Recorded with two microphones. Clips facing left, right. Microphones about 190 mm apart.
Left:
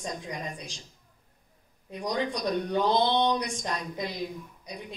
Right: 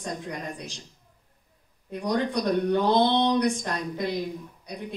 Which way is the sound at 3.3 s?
60° right (ahead or behind).